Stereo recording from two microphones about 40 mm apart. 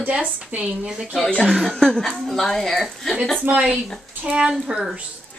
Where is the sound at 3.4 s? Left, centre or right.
Right.